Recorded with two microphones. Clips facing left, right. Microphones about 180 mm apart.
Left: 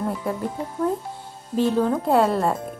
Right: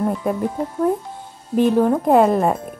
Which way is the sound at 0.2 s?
20° right (ahead or behind).